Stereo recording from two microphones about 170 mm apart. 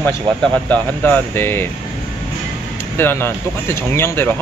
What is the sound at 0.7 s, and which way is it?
Speech, 10° left (ahead or behind).